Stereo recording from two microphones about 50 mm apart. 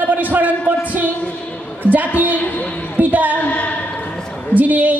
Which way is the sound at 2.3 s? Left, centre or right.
Left.